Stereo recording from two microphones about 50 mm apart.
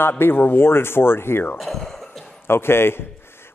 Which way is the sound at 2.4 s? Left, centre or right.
Left.